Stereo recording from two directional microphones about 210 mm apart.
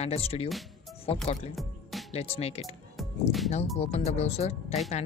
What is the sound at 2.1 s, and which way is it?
Speech, 30° left (ahead or behind).